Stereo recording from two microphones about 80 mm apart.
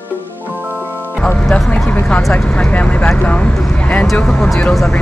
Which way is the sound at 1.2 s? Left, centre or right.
Centre.